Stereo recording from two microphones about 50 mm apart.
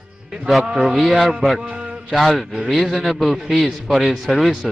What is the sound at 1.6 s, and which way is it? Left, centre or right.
Mantra, centre.